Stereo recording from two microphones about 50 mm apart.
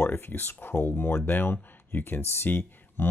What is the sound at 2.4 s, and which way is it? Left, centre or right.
Speech, left.